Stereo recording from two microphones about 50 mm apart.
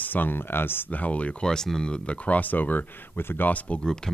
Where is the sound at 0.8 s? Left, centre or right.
Left.